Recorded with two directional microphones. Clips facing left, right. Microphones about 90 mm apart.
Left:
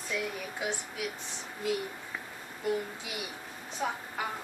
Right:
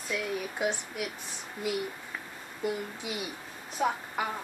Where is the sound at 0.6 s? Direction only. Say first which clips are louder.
Right 3 dB; 20° right (ahead or behind).